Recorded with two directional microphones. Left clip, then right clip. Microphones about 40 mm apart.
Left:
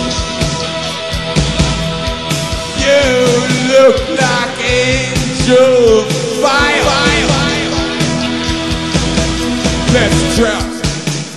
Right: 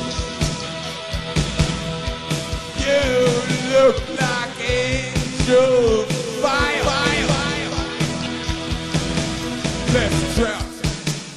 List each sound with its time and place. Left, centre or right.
2.8 s music: left
8.9 s music: left